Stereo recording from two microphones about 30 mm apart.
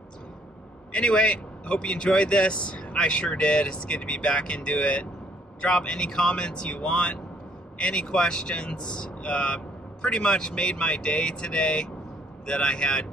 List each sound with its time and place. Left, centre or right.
0.9 s speech: left